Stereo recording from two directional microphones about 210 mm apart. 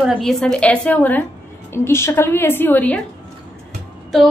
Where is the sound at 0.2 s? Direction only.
Centre (ahead or behind).